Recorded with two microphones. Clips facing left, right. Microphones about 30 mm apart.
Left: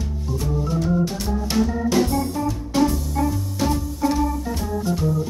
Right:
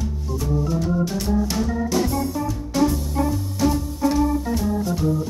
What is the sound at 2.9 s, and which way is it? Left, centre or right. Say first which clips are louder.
Music: even; centre.